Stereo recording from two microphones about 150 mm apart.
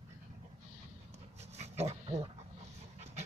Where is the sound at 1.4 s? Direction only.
45° right (ahead or behind).